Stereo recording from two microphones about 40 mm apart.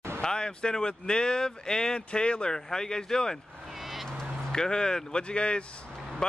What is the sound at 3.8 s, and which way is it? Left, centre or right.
Duck, centre.